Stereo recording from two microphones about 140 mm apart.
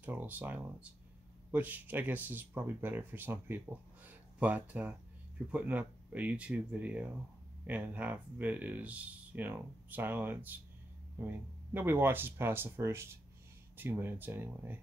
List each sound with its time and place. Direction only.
0.0 s speech: 15° right (ahead or behind)